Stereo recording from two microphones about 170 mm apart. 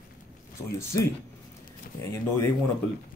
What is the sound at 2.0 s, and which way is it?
Speech, 15° left (ahead or behind).